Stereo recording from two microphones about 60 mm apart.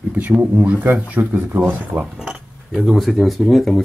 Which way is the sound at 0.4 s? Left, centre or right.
Right.